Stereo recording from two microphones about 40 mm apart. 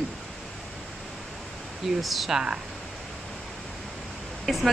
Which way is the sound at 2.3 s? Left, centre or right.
Centre.